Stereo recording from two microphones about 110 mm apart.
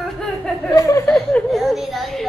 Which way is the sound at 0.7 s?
30° left (ahead or behind).